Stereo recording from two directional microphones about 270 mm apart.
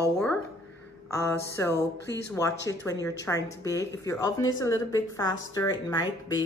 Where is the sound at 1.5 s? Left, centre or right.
Centre.